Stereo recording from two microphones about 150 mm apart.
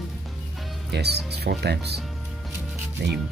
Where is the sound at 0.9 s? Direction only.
90° right.